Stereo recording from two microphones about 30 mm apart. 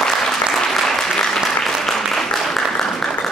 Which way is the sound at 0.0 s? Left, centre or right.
Centre.